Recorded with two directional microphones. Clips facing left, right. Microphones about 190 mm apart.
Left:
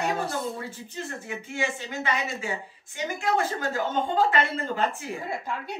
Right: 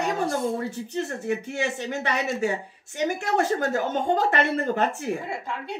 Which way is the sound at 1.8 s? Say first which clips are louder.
Right 3 dB; 40° right (ahead or behind).